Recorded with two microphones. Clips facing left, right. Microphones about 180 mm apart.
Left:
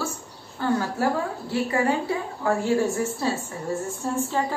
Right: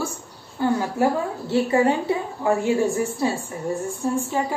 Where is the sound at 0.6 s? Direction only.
15° right (ahead or behind).